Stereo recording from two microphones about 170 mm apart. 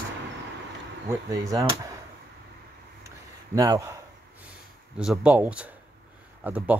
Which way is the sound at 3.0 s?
20° right (ahead or behind).